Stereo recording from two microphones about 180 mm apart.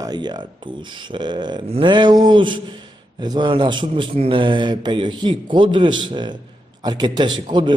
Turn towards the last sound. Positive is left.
turn(degrees=-25)  # may be behind; listen again after turning